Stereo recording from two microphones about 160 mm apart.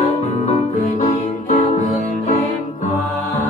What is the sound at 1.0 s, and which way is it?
Music, 40° left (ahead or behind).